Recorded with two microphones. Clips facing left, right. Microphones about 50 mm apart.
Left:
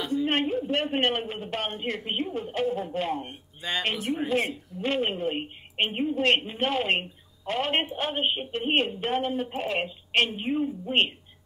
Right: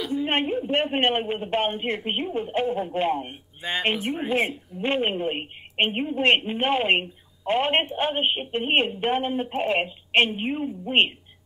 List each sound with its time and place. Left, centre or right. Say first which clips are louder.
0.1 s a man's voice: right 1 dB; right